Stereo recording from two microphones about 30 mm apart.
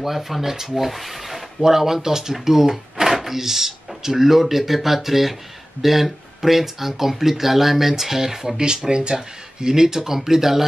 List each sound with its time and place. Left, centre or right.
0.0 s speech: centre
1.6 s speech: centre
8.5 s speech: right; by 10.6 s centre